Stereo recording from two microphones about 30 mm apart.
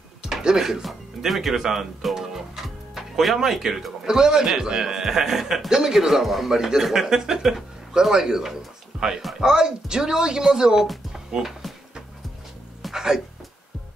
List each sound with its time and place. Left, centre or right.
0.4 s speech: right
0.8 s a man's voice: centre
2.1 s music: centre
3.4 s a man's voice: centre
4.0 s a man's voice: right
8.9 s a sound: centre
9.4 s speech: right
12.9 s music: centre